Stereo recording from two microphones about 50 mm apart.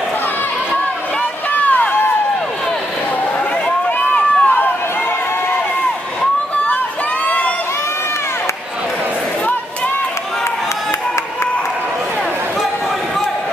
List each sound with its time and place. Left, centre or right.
1.5 s run: left
4.1 s run: left
7.2 s crowd: left